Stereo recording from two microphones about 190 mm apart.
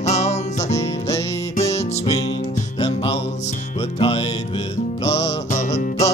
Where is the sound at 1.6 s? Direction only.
35° left (ahead or behind).